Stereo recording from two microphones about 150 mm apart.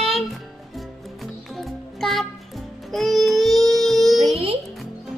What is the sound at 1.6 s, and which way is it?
Music, centre (ahead or behind).